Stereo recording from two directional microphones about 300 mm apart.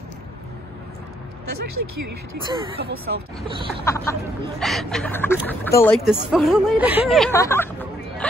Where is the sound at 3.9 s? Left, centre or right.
Centre.